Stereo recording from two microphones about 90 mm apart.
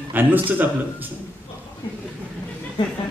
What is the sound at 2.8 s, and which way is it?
Speech, 60° left (ahead or behind).